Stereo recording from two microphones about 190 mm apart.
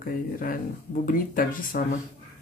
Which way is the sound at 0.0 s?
50° left (ahead or behind).